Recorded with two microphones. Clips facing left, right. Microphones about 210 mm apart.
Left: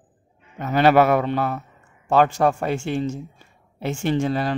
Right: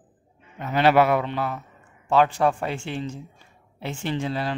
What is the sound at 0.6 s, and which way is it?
Speech, 45° left (ahead or behind).